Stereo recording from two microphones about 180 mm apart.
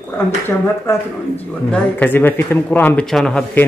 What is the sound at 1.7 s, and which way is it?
Speech, 10° left (ahead or behind).